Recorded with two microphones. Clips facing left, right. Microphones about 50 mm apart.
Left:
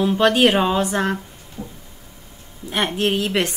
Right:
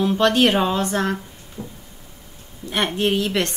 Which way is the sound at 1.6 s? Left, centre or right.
Left.